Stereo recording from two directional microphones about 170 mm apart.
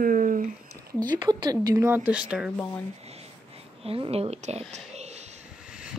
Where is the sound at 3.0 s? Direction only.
40° right (ahead or behind).